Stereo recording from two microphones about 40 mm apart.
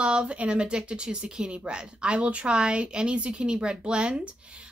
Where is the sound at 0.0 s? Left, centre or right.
Right.